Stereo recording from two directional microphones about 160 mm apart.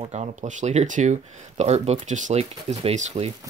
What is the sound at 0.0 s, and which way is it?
Speech, 45° right (ahead or behind).